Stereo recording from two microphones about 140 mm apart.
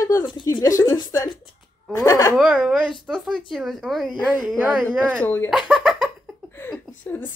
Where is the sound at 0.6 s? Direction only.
25° left (ahead or behind).